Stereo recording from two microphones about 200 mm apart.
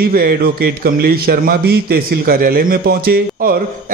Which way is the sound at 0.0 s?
50° right (ahead or behind).